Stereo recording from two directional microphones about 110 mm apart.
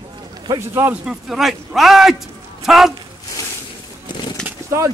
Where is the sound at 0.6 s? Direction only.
25° right (ahead or behind).